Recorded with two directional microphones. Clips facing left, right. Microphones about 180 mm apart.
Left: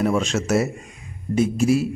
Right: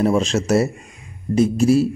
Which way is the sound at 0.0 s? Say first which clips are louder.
Right 3 dB; 35° right (ahead or behind).